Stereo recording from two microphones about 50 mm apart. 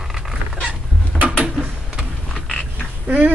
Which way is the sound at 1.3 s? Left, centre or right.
Centre.